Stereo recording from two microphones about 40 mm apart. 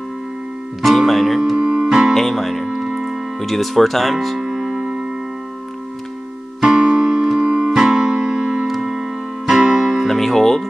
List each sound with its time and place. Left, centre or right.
0.8 s speech: centre
1.6 s keyboard: right
1.9 s music: centre
2.1 s speech: centre
2.6 s music: centre
3.3 s speech: centre
6.6 s music: centre
7.7 s music: centre